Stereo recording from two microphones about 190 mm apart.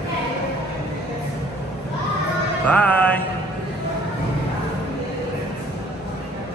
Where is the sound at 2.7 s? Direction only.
5° left (ahead or behind).